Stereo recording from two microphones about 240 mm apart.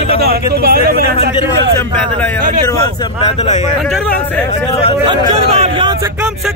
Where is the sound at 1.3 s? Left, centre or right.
Centre.